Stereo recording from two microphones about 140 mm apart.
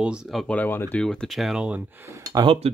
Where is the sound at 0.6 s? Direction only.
15° left (ahead or behind).